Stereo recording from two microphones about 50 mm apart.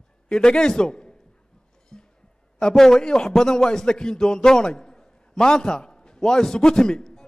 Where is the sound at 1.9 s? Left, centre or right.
Centre.